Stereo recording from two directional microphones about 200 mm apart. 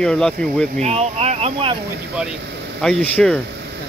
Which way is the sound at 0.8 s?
30° right (ahead or behind).